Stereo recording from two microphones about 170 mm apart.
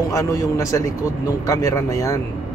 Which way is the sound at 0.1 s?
20° left (ahead or behind).